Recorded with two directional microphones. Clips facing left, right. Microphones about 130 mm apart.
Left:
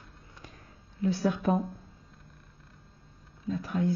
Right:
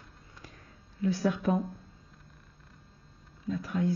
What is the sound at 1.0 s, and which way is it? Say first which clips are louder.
Speech: left 1 dB; 25° left (ahead or behind).